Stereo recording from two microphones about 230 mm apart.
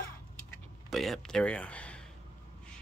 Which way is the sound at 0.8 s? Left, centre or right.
Centre.